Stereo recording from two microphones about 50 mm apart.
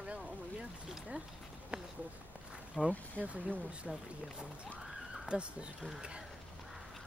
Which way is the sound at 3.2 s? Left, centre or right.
Right.